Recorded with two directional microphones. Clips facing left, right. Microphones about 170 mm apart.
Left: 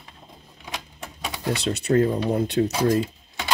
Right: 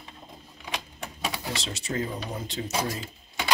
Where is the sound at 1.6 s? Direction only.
60° left (ahead or behind).